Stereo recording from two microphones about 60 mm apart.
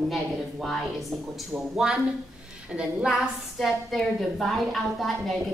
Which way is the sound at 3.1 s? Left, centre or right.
Centre.